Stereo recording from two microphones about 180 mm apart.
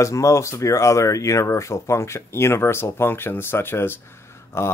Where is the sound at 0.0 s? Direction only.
15° left (ahead or behind).